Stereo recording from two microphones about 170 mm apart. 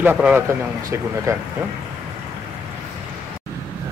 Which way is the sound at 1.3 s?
20° right (ahead or behind).